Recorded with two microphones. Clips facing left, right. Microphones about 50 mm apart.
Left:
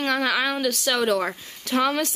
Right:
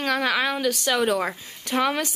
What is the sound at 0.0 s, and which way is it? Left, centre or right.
A woman's voice, centre.